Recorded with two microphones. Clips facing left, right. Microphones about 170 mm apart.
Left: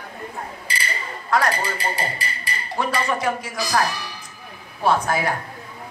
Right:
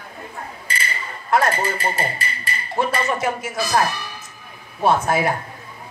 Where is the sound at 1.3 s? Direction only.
25° right (ahead or behind).